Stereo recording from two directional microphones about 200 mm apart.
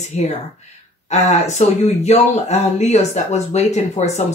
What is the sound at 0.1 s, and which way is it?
Speech, 35° left (ahead or behind).